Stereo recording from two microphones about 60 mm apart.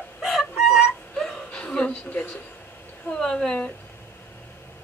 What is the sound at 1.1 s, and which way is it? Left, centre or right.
Whimper, centre.